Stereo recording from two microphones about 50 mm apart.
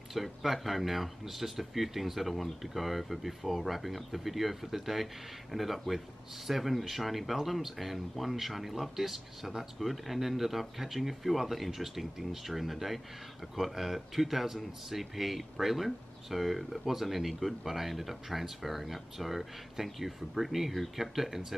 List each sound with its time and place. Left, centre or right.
0.1 s speech: centre